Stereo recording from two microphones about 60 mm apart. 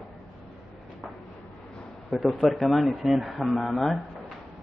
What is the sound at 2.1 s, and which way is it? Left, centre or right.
A man's voice, centre.